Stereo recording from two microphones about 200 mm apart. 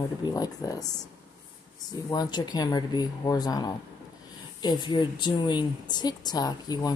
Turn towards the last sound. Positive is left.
turn(degrees=20)  # may be behind; listen again after turning